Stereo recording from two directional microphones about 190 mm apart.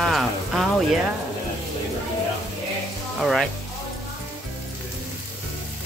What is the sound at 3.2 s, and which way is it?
Speech, centre (ahead or behind).